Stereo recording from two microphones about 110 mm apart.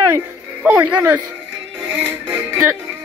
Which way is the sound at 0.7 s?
15° right (ahead or behind).